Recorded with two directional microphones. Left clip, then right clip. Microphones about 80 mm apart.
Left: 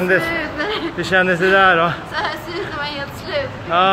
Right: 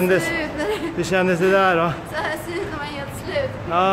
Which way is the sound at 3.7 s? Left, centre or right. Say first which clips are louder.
Left 4 dB; right.